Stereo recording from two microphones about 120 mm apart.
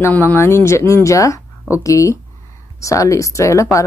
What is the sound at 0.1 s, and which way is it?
A woman's voice, 20° left (ahead or behind).